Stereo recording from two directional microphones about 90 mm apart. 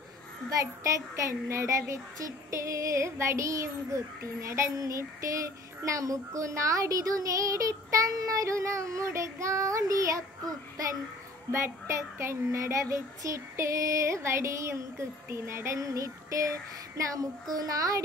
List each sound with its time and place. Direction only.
0.5 s a child's voice: 40° right (ahead or behind)